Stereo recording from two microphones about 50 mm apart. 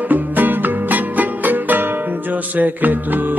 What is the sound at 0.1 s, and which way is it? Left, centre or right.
Music, right.